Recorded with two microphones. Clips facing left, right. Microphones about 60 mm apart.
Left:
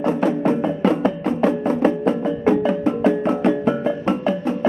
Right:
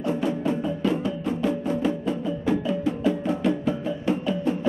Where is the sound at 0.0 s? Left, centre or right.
Left.